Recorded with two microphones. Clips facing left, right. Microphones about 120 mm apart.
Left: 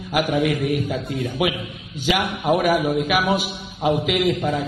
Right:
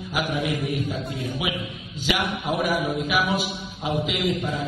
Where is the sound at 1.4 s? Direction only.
60° left (ahead or behind).